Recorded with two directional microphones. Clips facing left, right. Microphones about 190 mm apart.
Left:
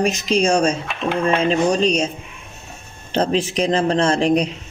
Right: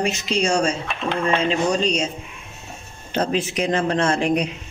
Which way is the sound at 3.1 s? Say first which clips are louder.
Left 3 dB; 30° left (ahead or behind).